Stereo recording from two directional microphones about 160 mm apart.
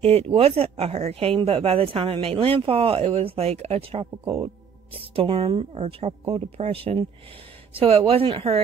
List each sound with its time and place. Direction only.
0.0 s speech: 40° right (ahead or behind)